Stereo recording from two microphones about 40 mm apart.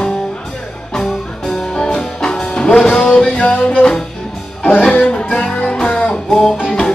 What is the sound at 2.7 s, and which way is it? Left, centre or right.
Music, centre.